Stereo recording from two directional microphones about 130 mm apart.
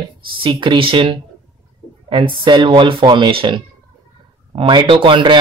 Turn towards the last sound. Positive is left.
turn(degrees=-40)  # may be behind; listen again after turning